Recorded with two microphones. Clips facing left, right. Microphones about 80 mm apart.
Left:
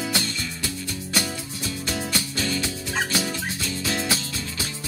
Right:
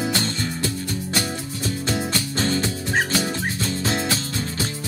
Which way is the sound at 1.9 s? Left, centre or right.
Right.